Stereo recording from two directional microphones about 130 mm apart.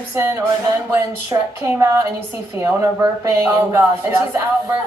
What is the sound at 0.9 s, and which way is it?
Speech, 20° right (ahead or behind).